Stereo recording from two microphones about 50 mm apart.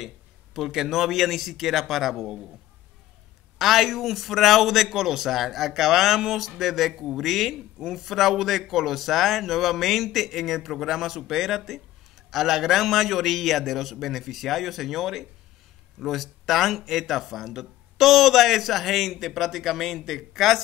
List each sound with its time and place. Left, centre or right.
0.6 s speech: centre
3.5 s speech: centre